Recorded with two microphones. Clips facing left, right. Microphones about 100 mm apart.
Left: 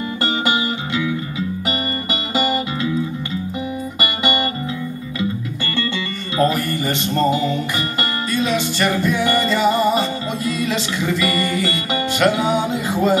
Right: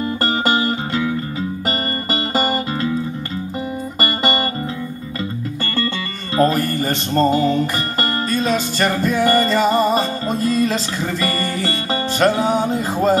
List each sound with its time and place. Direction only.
0.2 s music: 40° right (ahead or behind)
2.3 s music: 40° right (ahead or behind)
4.0 s music: 40° right (ahead or behind)
6.3 s music: 40° right (ahead or behind)